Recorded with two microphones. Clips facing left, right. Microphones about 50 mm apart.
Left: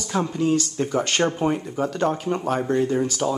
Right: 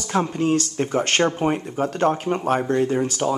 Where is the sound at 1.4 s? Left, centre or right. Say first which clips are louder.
Right 1 dB; right.